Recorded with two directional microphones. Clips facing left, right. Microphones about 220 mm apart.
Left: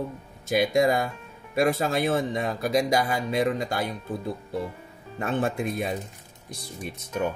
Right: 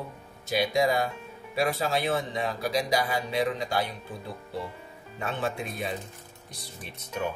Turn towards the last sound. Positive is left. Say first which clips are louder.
# left 5 dB
turn(degrees=50)  # may be behind; listen again after turning